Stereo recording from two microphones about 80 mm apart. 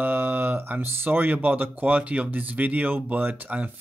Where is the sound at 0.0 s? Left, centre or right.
Right.